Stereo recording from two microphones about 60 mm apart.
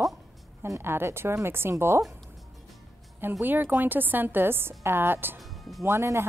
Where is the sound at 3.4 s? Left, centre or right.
Right.